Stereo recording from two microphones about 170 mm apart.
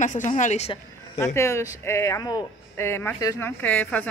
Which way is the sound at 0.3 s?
40° left (ahead or behind).